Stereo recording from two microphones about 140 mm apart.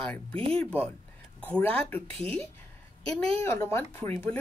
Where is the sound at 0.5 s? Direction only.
10° left (ahead or behind).